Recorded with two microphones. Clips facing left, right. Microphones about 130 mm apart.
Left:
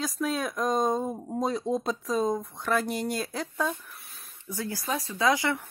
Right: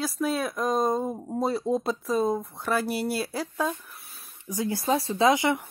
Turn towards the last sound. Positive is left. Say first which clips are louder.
# right 4 dB
turn(degrees=-20)  # may be behind; listen again after turning